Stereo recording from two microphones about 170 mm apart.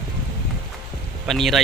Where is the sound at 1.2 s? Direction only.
Centre (ahead or behind).